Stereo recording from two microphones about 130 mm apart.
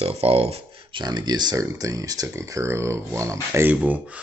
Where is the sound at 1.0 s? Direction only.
30° right (ahead or behind).